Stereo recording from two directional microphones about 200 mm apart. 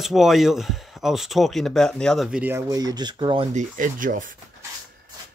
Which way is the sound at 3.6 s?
40° right (ahead or behind).